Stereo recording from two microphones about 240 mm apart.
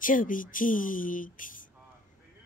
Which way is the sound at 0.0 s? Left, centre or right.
Left.